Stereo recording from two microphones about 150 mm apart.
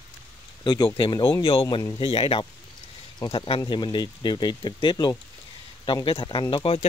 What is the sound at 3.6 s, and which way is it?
Speech, 30° left (ahead or behind).